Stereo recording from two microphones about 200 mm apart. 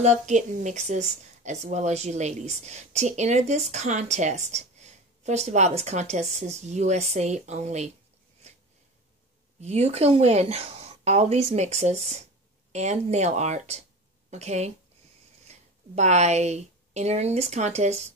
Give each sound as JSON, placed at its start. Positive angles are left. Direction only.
{"t": 0.0, "sound": "a woman's voice", "side_deg": -35}
{"t": 9.6, "sound": "a woman's voice", "side_deg": -35}